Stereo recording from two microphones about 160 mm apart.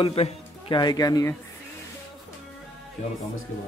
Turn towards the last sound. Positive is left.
turn(degrees=45)  # may be behind; listen again after turning